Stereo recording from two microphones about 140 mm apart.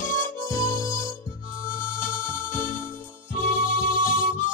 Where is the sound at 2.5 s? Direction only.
20° left (ahead or behind).